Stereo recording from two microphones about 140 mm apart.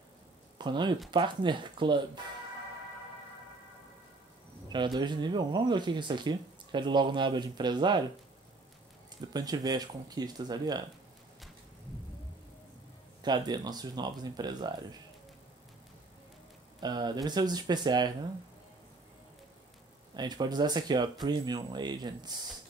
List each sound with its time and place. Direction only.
0.6 s speech: 35° right (ahead or behind)
4.7 s speech: 35° right (ahead or behind)
9.3 s speech: 25° right (ahead or behind)
13.2 s speech: 30° right (ahead or behind)
16.8 s speech: 30° right (ahead or behind)
20.2 s speech: 30° right (ahead or behind)